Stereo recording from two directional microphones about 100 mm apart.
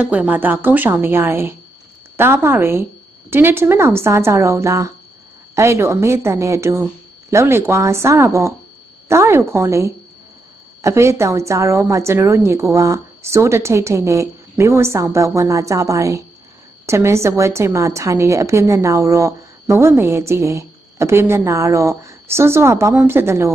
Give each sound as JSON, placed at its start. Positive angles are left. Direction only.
{"t": 0.0, "sound": "a woman's voice", "side_deg": -15}